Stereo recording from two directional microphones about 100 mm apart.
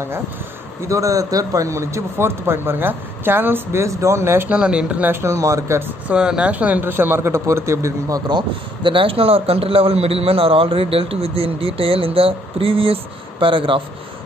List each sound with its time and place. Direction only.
0.8 s speech: 35° right (ahead or behind)
4.5 s speech: 10° right (ahead or behind); by 5.9 s 30° right (ahead or behind)
6.0 s speech: 10° right (ahead or behind); by 8.2 s 30° right (ahead or behind)
8.3 s speech: 50° right (ahead or behind)